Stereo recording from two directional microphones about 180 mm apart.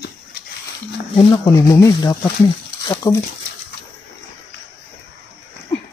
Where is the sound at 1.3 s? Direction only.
20° left (ahead or behind).